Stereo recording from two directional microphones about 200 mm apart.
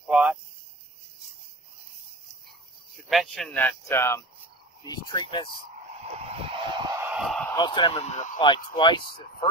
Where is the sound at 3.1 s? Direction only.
Centre (ahead or behind); by 5.5 s 20° left (ahead or behind).